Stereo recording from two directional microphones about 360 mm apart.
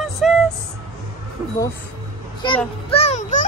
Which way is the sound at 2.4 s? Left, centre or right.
Centre.